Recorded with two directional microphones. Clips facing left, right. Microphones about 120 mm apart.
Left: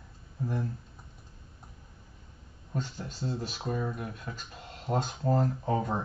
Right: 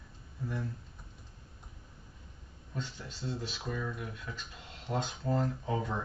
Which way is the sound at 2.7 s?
40° left (ahead or behind).